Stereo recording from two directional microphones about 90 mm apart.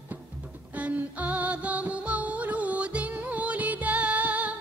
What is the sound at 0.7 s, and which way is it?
Music, 15° right (ahead or behind).